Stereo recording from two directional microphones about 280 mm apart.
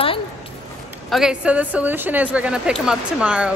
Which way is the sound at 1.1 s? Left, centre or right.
Centre.